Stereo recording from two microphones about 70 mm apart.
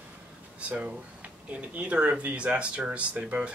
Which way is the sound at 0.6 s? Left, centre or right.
Centre.